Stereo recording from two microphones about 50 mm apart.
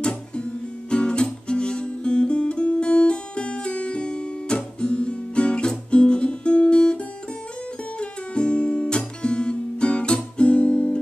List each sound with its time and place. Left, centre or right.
0.0 s guitar: left
8.0 s guitar: left